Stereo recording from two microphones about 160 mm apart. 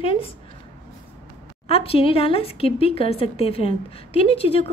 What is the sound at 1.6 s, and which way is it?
A woman's voice, 35° left (ahead or behind).